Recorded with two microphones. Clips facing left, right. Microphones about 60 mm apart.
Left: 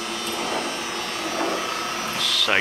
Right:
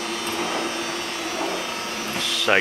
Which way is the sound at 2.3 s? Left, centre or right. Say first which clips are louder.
Right 3 dB; right.